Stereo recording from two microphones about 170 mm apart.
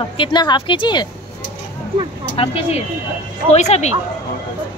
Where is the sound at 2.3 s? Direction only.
35° left (ahead or behind).